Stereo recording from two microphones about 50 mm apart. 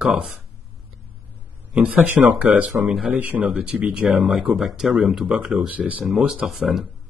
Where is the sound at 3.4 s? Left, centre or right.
Right.